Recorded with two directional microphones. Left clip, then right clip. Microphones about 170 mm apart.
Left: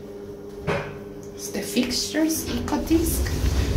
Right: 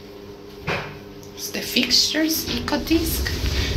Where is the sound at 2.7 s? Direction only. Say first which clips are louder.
Right 1 dB; 20° left (ahead or behind).